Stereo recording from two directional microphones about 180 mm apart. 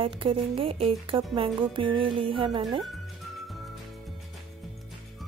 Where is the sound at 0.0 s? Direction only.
30° right (ahead or behind).